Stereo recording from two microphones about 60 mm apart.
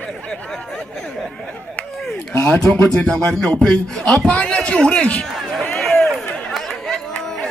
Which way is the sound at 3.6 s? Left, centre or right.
Centre.